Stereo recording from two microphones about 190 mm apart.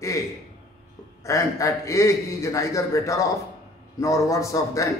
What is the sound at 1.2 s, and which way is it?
A man's voice, 15° left (ahead or behind).